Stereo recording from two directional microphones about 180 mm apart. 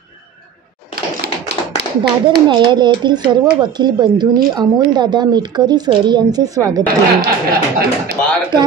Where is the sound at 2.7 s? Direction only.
25° right (ahead or behind).